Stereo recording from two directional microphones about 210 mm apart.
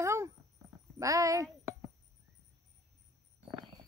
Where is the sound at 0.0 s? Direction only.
15° right (ahead or behind).